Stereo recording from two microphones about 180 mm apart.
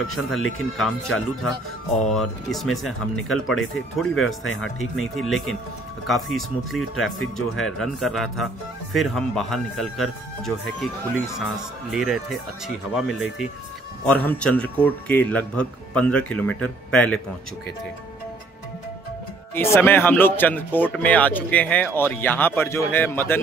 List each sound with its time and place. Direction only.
0.1 s speech: centre (ahead or behind)
11.9 s speech: 5° right (ahead or behind)
19.5 s speech: 10° left (ahead or behind)